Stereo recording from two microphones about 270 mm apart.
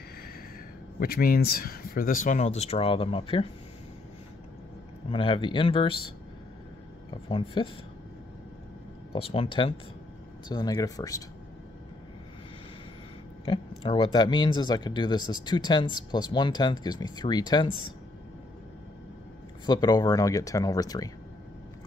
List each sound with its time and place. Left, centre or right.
0.9 s speech: left
5.1 s speech: centre
7.2 s speech: centre
9.1 s speech: centre
13.5 s speech: centre
19.6 s speech: centre